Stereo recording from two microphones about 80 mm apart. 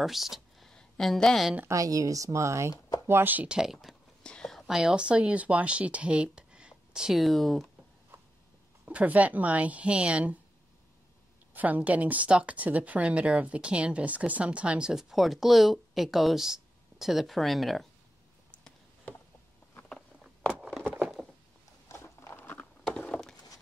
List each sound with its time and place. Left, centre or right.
0.0 s speech: centre
1.7 s speech: right
3.1 s speech: right
3.4 s speech: centre
4.2 s whispering: centre
4.6 s speech: centre
8.8 s speech: centre
11.5 s a woman's voice: centre
21.0 s a sound: centre
21.8 s a sound: left
22.9 s a sound: centre